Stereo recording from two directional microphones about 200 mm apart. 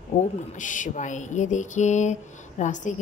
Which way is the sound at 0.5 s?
40° left (ahead or behind).